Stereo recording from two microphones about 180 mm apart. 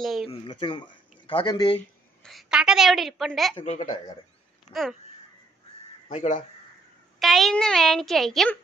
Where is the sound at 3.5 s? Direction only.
35° left (ahead or behind).